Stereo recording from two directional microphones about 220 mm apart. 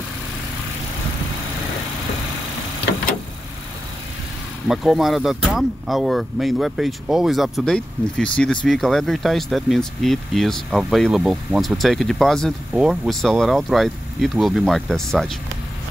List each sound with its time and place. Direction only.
4.6 s speech: centre (ahead or behind)